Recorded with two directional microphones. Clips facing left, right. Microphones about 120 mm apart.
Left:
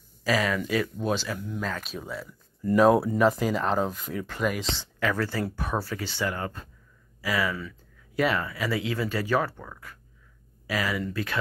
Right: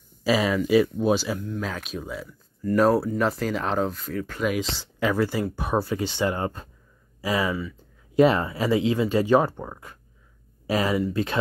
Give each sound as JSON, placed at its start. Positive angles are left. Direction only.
{"t": 0.2, "sound": "speech", "side_deg": -15}
{"t": 5.0, "sound": "speech", "side_deg": -15}